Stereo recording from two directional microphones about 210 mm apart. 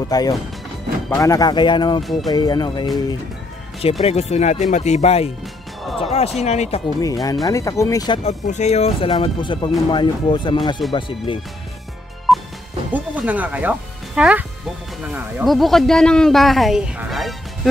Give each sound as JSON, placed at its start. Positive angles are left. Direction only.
{"t": 0.1, "sound": "speech", "side_deg": 20}
{"t": 4.0, "sound": "speech", "side_deg": 30}
{"t": 7.0, "sound": "speech", "side_deg": 15}
{"t": 8.2, "sound": "speech", "side_deg": 30}
{"t": 12.3, "sound": "music", "side_deg": 0}
{"t": 12.9, "sound": "speech", "side_deg": -5}